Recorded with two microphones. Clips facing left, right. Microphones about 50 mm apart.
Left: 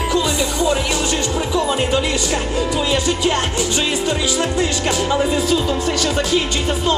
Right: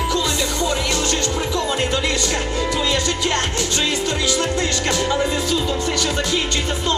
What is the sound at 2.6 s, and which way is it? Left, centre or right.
Music, centre.